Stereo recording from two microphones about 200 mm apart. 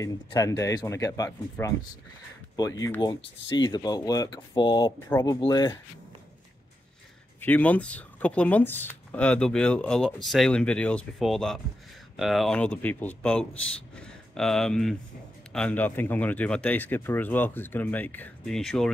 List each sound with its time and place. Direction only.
0.0 s speech: 15° left (ahead or behind)
7.3 s speech: 10° left (ahead or behind)